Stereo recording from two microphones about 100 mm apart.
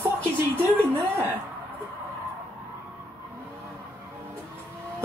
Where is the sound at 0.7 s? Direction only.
20° right (ahead or behind).